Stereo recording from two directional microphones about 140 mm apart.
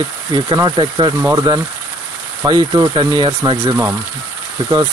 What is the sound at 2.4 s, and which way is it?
Speech, 30° right (ahead or behind).